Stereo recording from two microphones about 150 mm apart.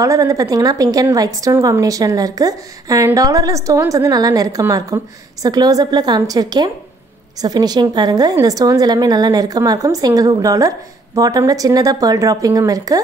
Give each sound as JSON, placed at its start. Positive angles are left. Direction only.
{"t": 0.0, "sound": "a woman's voice", "side_deg": -20}